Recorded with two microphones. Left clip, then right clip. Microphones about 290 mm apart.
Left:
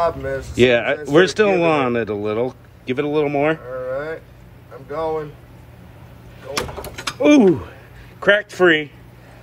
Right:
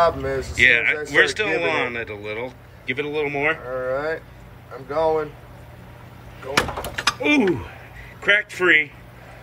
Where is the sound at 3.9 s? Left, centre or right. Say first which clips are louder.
Right 1 dB; right.